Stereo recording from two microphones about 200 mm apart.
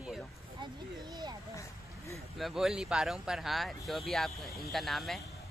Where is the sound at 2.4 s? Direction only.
Centre (ahead or behind).